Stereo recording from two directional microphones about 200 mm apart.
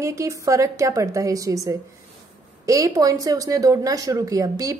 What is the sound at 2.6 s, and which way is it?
Speech, 15° right (ahead or behind).